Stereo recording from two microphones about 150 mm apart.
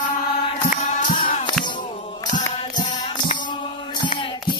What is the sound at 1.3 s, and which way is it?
Music, 40° left (ahead or behind).